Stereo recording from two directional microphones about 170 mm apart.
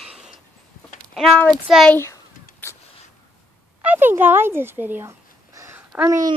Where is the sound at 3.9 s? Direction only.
10° right (ahead or behind).